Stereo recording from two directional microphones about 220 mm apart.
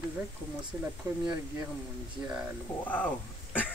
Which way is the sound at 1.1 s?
15° right (ahead or behind).